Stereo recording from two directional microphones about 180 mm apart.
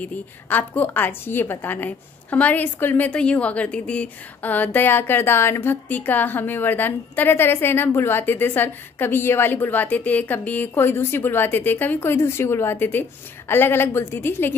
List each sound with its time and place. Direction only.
0.0 s a woman's voice: 10° left (ahead or behind)